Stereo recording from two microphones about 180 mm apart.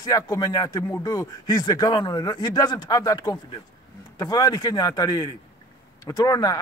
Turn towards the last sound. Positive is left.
turn(degrees=20)  # may be behind; listen again after turning